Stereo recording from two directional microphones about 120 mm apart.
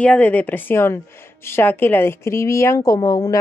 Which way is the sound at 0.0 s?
10° left (ahead or behind).